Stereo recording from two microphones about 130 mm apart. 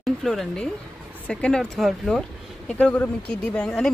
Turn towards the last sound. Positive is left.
turn(degrees=5)  # may be behind; listen again after turning